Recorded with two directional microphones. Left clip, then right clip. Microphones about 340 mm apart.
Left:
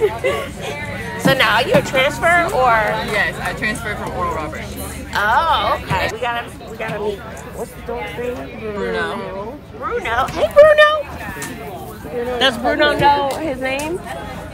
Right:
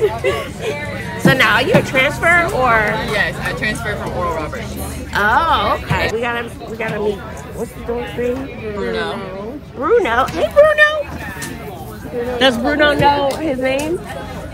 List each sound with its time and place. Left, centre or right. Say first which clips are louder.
0.0 s speech: right 1 dB; left
1.2 s speech: right 2 dB; centre
3.1 s speech: right 1 dB; centre
8.7 s speech: even; centre
10.3 s speech: left 4 dB; centre
12.6 s speech: left 1 dB; centre